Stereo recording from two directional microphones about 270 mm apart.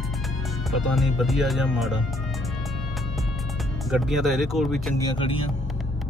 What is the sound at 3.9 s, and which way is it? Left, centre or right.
Speech, centre.